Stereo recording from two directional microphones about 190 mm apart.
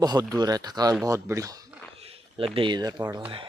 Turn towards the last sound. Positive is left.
turn(degrees=-20)  # may be behind; listen again after turning